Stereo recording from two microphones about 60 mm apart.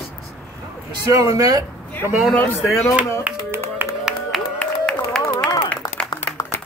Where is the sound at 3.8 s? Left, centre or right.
Right.